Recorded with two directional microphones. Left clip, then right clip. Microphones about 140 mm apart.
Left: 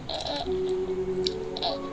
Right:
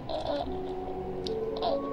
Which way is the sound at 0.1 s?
20° right (ahead or behind).